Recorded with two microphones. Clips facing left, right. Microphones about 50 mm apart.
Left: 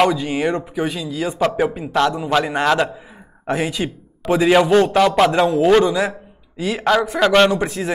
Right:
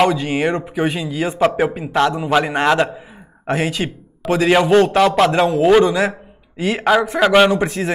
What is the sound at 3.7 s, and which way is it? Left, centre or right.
Speech, right.